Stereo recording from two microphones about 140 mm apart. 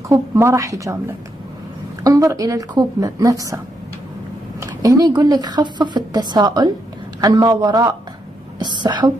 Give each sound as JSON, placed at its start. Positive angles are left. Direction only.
{"t": 0.1, "sound": "speech", "side_deg": -20}
{"t": 2.0, "sound": "speech", "side_deg": -25}
{"t": 8.5, "sound": "a sound", "side_deg": -30}